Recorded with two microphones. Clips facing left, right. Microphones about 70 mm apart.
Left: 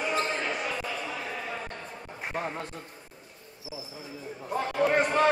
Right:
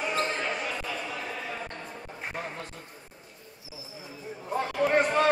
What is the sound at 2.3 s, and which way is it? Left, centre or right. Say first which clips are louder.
Speech: left 5 dB; left.